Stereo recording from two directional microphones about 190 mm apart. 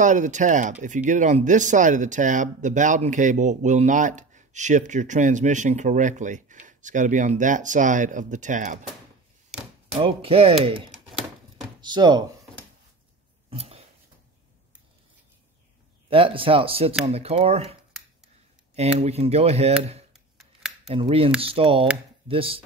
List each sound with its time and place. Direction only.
0.0 s speech: 40° right (ahead or behind)
9.9 s speech: 30° right (ahead or behind)
13.5 s a sound: 30° right (ahead or behind)
16.1 s speech: 30° right (ahead or behind)
18.8 s speech: 35° right (ahead or behind)
20.1 s a sound: centre (ahead or behind)
20.9 s speech: 30° right (ahead or behind)